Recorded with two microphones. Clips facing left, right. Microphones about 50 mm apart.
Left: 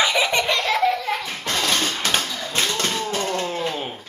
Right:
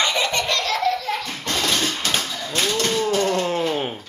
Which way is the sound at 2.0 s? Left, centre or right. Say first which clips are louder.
Left 1 dB; left.